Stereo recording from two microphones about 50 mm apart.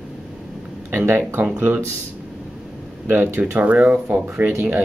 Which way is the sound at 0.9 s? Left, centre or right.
Right.